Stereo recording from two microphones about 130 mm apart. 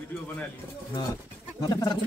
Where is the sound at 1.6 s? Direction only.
35° left (ahead or behind).